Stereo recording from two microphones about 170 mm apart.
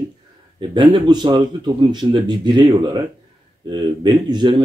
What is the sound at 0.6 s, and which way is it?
A man's voice, 25° right (ahead or behind).